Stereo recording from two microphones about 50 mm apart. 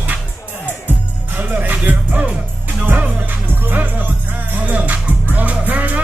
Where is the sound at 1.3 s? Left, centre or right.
Right.